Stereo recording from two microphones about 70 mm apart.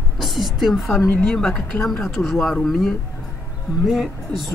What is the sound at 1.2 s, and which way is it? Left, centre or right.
A woman's voice, centre.